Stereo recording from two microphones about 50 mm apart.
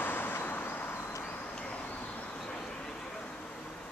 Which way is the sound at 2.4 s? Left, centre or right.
Centre.